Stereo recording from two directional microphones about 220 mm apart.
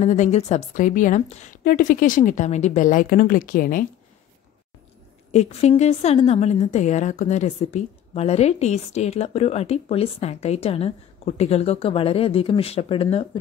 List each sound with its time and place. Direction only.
0.0 s a woman's voice: 35° left (ahead or behind)
5.3 s a woman's voice: 30° left (ahead or behind)